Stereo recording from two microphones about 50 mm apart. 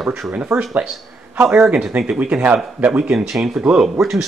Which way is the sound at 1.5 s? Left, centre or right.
Right.